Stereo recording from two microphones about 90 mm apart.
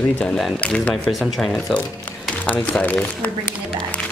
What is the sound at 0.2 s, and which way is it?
Speech, 5° left (ahead or behind).